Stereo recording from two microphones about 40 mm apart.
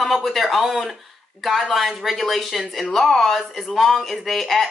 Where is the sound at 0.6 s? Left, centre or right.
Centre.